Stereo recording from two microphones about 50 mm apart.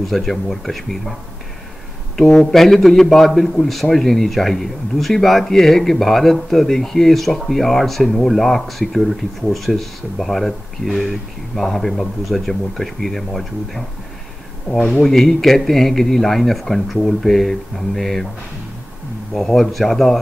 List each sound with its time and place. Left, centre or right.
0.0 s speech: centre
2.2 s speech: centre
2.5 s speech: centre
15.0 s speech: centre
19.3 s speech: centre